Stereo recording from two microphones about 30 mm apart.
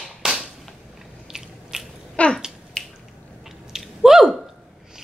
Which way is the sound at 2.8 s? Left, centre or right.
Left.